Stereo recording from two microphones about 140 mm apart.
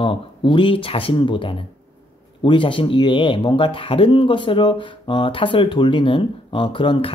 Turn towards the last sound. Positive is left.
turn(degrees=35)  # may be behind; listen again after turning